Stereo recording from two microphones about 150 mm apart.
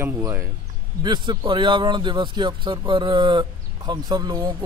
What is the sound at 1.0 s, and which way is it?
A man's voice, 30° right (ahead or behind).